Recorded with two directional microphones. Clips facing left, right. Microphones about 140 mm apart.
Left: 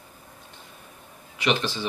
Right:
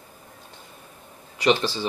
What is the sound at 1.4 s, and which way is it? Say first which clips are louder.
Speech: right 4 dB; 35° right (ahead or behind).